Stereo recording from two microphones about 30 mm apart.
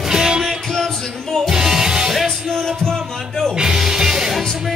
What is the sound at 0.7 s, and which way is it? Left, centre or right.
Music, centre.